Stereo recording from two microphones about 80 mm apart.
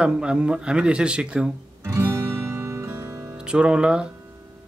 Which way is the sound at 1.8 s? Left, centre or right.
Right.